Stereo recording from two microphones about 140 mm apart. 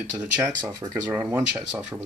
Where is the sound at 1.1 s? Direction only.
15° right (ahead or behind).